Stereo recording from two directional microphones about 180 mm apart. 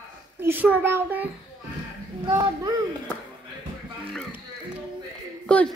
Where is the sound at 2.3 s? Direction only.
25° right (ahead or behind).